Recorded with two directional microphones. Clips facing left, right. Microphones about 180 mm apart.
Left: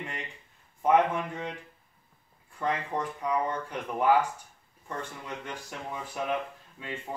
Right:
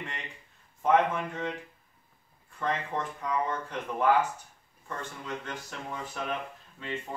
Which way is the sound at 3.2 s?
10° left (ahead or behind).